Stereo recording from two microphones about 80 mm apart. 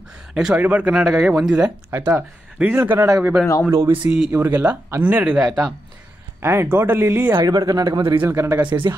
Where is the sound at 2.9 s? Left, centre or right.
Right.